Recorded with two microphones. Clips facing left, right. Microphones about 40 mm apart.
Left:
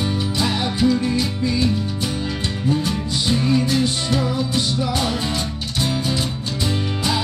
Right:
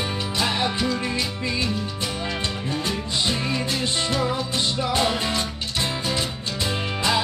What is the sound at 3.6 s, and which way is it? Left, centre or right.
Music, right.